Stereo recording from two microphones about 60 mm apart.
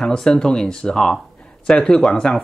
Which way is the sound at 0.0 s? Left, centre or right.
Centre.